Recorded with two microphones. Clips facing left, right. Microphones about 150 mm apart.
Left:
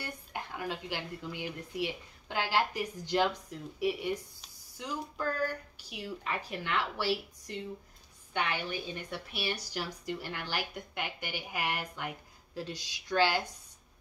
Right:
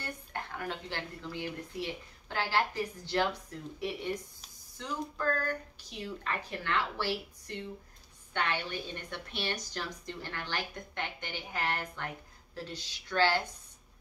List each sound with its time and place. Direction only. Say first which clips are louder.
0.0 s speech: even; 10° left (ahead or behind)